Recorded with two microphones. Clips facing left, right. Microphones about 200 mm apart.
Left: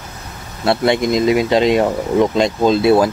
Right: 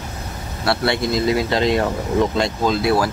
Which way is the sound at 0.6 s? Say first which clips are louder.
Left 5 dB; 20° left (ahead or behind).